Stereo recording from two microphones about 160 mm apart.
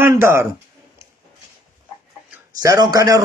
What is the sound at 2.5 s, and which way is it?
Speech, 25° right (ahead or behind).